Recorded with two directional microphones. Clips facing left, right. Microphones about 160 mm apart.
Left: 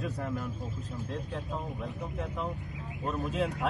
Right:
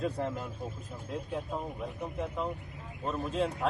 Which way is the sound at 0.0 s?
20° right (ahead or behind).